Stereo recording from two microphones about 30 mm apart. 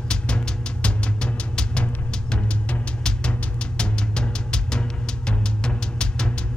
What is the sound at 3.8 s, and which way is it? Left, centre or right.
Music, left.